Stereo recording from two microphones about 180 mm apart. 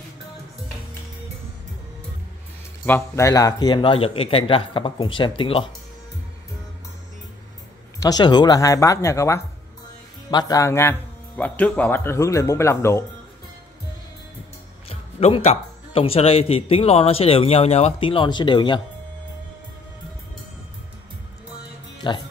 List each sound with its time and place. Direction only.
2.8 s speech: 15° left (ahead or behind); by 5.7 s 30° left (ahead or behind)
8.0 s speech: 20° left (ahead or behind)
14.9 s speech: 35° left (ahead or behind)
22.0 s speech: 25° left (ahead or behind)